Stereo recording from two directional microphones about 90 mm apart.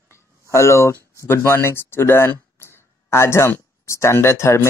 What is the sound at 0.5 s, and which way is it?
Speech, 30° left (ahead or behind).